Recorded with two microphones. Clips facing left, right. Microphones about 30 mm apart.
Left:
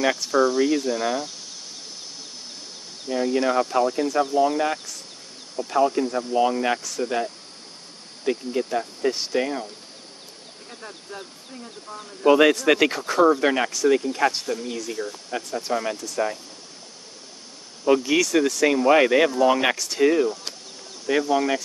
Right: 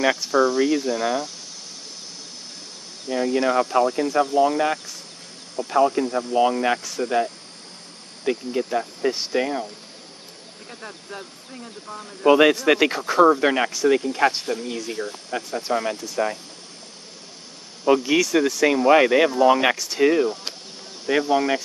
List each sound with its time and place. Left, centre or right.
0.0 s speech: centre
3.1 s speech: centre
8.3 s speech: centre
12.3 s speech: centre
14.9 s speech: right
15.3 s speech: centre
17.8 s speech: centre
21.3 s speech: centre